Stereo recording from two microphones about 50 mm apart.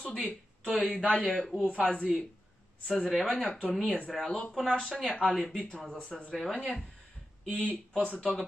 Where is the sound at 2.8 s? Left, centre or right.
Centre.